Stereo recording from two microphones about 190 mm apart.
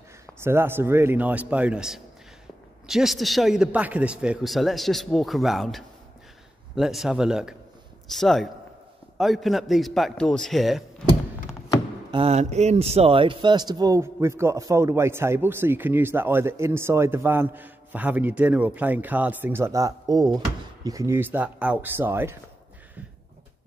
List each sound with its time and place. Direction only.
0.4 s speech: 10° right (ahead or behind)
12.1 s speech: 30° right (ahead or behind); by 22.4 s 10° right (ahead or behind)